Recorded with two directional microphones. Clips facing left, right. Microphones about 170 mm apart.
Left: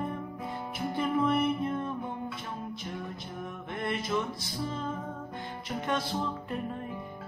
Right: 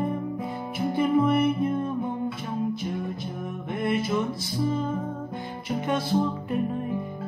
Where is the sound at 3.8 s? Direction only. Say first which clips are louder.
Right 6 dB; 5° right (ahead or behind).